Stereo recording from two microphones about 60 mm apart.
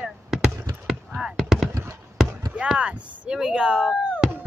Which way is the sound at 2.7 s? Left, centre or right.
Centre.